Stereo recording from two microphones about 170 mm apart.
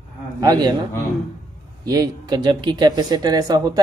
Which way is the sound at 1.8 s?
20° right (ahead or behind).